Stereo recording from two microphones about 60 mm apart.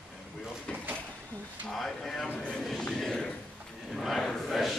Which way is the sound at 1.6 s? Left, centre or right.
Centre.